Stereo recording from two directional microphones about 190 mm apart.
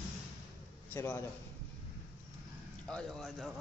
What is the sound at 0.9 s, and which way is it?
Speech, 10° left (ahead or behind).